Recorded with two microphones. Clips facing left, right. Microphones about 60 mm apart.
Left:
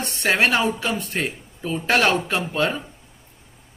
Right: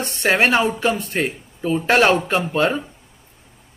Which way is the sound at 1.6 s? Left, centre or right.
Centre.